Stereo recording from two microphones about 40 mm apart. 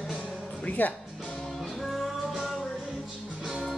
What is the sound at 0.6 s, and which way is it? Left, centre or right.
Music, left.